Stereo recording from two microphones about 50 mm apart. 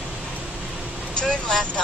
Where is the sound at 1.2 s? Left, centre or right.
Centre.